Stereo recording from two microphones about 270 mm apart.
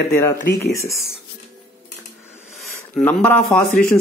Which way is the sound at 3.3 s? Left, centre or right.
Left.